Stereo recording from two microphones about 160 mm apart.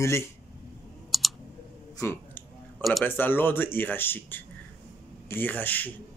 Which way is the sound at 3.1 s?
10° left (ahead or behind).